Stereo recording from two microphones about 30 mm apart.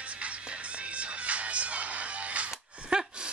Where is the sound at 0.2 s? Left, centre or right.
Right.